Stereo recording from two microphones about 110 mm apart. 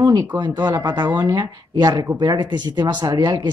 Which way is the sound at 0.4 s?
40° right (ahead or behind).